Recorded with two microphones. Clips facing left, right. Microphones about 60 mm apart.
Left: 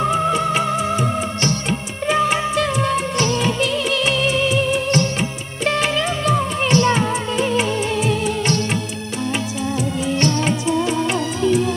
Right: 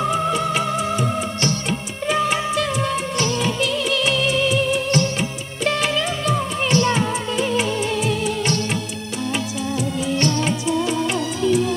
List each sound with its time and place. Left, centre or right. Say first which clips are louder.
0.0 s music: left 2 dB; left
2.0 s music of bollywood: left 2 dB; left
5.6 s music: left 1 dB; left
10.2 s music: left 3 dB; left